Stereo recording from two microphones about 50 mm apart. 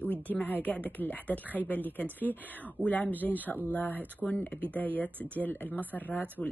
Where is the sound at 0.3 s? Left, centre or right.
Left.